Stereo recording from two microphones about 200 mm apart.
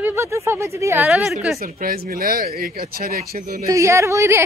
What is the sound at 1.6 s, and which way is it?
Speech, 45° right (ahead or behind).